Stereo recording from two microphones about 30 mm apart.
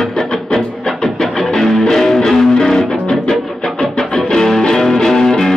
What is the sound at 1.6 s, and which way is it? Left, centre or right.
Music, centre.